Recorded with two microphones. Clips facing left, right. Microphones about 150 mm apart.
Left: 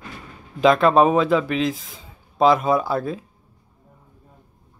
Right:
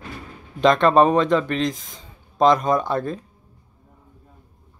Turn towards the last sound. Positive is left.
turn(degrees=5)  # may be behind; listen again after turning